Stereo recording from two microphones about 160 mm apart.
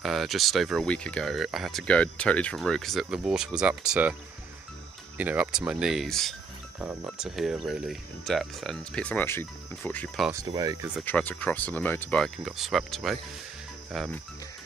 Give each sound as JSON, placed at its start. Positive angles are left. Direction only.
{"t": 0.0, "sound": "speech", "side_deg": 0}
{"t": 5.1, "sound": "speech", "side_deg": -10}
{"t": 6.8, "sound": "speech", "side_deg": -10}
{"t": 7.1, "sound": "speech", "side_deg": 0}
{"t": 10.4, "sound": "speech", "side_deg": -25}
{"t": 11.1, "sound": "speech", "side_deg": 10}